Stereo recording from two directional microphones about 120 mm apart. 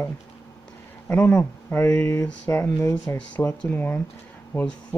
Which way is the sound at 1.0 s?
15° left (ahead or behind).